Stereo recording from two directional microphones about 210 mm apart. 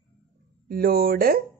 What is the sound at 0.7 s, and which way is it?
Speech, 45° right (ahead or behind).